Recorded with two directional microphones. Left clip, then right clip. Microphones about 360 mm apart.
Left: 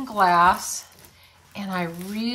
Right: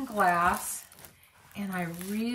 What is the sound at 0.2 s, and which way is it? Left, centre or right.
Speech, centre.